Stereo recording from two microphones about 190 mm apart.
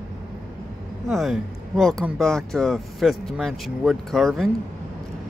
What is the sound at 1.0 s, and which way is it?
Speech, centre (ahead or behind).